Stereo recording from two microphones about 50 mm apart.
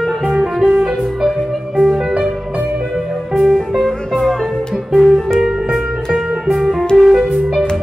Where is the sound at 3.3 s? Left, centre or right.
Centre.